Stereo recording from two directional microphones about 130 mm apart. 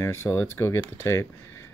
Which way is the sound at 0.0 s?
20° left (ahead or behind).